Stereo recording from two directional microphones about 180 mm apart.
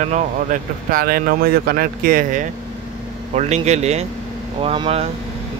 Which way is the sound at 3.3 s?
40° right (ahead or behind).